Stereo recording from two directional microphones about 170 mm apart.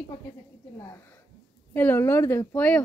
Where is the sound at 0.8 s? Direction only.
15° left (ahead or behind).